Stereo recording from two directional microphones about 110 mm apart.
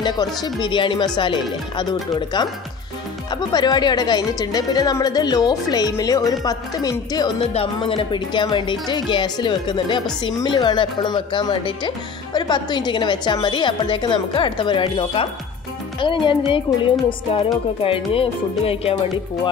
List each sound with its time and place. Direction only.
0.0 s a woman's voice: 40° left (ahead or behind)
7.3 s a woman's voice: 60° left (ahead or behind)